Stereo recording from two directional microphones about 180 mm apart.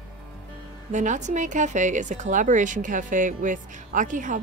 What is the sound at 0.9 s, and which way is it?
A woman's voice, 45° right (ahead or behind).